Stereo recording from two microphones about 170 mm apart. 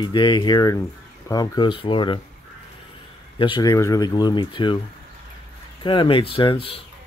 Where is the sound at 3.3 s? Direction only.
30° left (ahead or behind).